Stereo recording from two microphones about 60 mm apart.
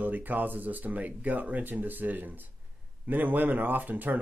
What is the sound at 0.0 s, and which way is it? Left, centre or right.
Speech, right.